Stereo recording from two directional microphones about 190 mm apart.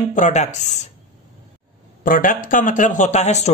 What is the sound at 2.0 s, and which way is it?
A man's voice, 45° left (ahead or behind).